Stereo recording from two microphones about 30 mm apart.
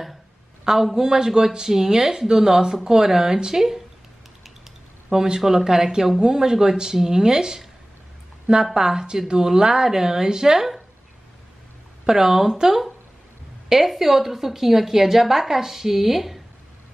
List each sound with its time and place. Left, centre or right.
0.9 s a woman's voice: right
5.1 s speech: right
8.7 s speech: centre
12.1 s a woman's voice: centre